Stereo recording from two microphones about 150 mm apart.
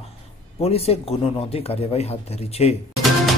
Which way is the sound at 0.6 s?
45° left (ahead or behind).